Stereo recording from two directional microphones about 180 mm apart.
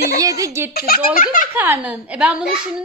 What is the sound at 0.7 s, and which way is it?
Speech, 55° left (ahead or behind).